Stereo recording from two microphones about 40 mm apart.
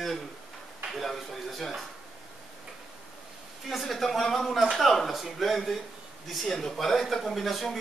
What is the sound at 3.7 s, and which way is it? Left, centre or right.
Speech, centre.